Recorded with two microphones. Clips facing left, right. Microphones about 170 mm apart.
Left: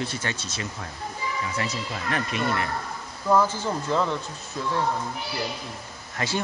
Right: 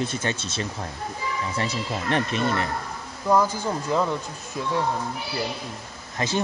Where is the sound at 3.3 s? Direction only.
10° right (ahead or behind).